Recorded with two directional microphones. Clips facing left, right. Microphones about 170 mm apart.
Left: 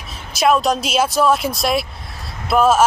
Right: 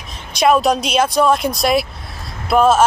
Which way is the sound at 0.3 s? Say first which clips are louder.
Right 2 dB; centre (ahead or behind).